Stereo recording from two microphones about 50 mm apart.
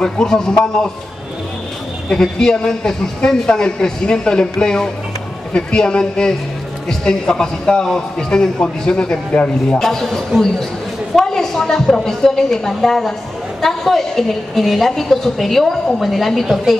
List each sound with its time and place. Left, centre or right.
0.0 s speech: centre
2.0 s speech: centre
9.8 s a woman's voice: centre